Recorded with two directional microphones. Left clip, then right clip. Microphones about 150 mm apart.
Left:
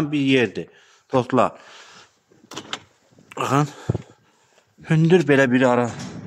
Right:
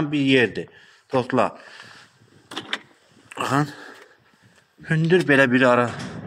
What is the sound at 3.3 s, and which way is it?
Speech, 40° left (ahead or behind).